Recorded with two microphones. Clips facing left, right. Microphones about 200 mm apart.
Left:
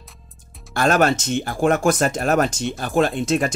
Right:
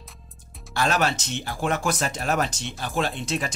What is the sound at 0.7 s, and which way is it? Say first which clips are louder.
Speech: left 6 dB; 50° left (ahead or behind).